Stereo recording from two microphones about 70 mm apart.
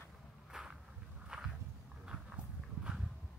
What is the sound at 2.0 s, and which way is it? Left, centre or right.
Horse, centre.